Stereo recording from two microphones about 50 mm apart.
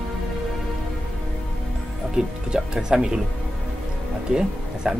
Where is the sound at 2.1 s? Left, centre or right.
Centre.